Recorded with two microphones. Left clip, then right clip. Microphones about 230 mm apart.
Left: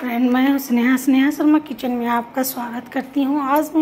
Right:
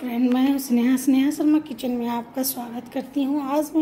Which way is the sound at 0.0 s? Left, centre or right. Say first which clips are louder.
Left 4 dB; centre.